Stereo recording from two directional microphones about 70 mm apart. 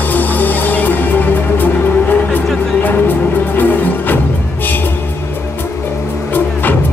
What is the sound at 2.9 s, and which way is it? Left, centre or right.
Music, left.